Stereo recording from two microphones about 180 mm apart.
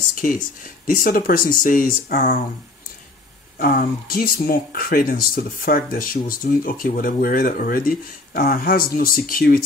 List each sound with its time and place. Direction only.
0.8 s speech: 50° left (ahead or behind)
3.5 s speech: 50° left (ahead or behind)